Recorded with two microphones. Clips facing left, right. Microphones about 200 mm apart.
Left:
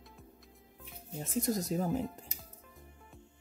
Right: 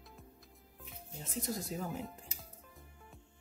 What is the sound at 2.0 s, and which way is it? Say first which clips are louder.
Music: left 6 dB; centre (ahead or behind).